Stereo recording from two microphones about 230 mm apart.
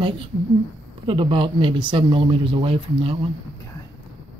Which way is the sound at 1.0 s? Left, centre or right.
Right.